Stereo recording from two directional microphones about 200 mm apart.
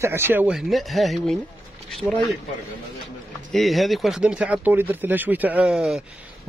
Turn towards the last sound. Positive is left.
turn(degrees=-5)  # may be behind; listen again after turning